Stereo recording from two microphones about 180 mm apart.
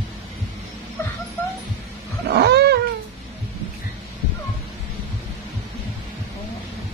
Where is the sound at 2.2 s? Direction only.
65° right (ahead or behind).